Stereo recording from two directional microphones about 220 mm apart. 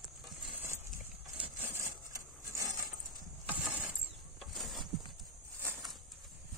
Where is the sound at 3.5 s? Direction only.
10° right (ahead or behind).